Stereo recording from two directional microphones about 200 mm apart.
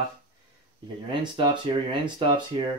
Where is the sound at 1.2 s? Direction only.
20° right (ahead or behind).